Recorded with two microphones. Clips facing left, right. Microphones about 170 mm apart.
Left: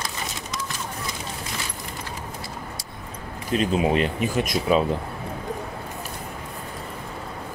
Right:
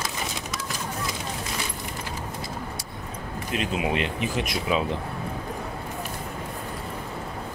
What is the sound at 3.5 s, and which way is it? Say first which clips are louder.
Speech: left 6 dB; 35° left (ahead or behind).